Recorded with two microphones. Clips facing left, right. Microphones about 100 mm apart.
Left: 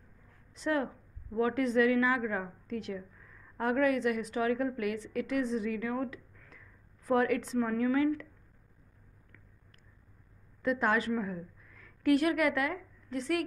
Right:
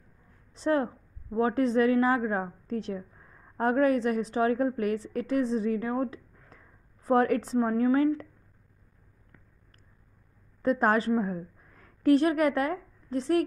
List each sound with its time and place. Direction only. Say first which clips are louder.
0.5 s a woman's voice: right 5 dB; 35° right (ahead or behind)
10.6 s a woman's voice: right 5 dB; 40° right (ahead or behind)